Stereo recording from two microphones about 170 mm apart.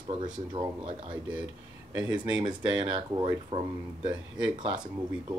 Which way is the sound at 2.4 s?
30° right (ahead or behind).